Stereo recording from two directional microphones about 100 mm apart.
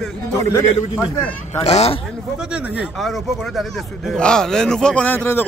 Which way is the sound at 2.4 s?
15° right (ahead or behind).